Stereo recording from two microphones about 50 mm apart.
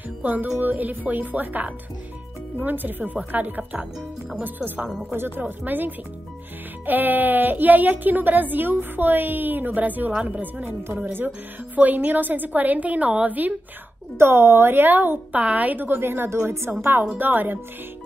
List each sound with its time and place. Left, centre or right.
0.2 s music: right
0.6 s a woman's voice: right
14.1 s a woman's voice: right
17.2 s a woman's voice: right